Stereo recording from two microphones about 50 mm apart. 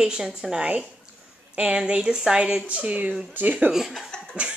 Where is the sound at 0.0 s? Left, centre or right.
Centre.